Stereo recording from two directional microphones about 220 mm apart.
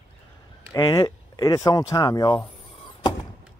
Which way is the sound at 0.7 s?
20° left (ahead or behind).